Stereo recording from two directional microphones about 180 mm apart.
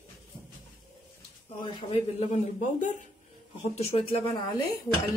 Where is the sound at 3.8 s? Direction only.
30° left (ahead or behind).